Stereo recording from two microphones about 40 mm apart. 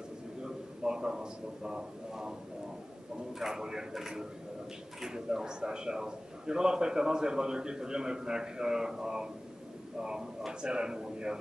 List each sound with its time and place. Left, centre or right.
0.4 s a man's voice: centre
3.3 s a man's voice: centre